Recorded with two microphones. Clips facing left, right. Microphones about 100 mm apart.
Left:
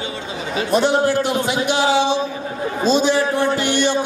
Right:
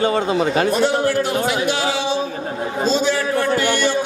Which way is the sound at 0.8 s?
20° left (ahead or behind).